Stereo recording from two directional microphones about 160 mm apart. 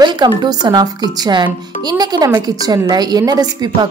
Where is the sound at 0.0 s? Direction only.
25° right (ahead or behind).